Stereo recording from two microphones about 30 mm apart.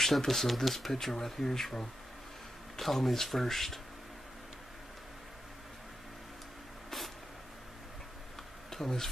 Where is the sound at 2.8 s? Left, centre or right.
Centre.